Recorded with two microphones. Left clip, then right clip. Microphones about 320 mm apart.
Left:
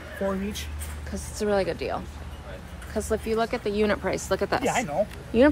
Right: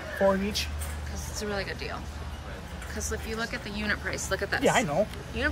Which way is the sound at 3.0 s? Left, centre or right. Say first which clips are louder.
Left 8 dB; centre.